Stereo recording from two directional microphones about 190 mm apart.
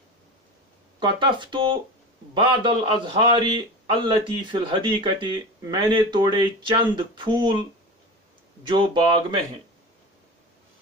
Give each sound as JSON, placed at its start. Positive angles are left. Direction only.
{"t": 0.9, "sound": "a man's voice", "side_deg": -25}
{"t": 8.6, "sound": "a man's voice", "side_deg": -25}